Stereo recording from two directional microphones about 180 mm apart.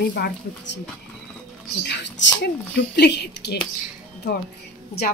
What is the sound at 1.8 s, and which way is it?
Speech, 70° left (ahead or behind).